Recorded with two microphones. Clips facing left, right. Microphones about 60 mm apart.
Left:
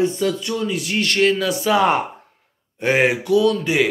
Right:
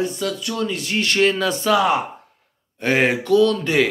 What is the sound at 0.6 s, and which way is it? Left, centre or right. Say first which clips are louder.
Speech: left 1 dB; centre.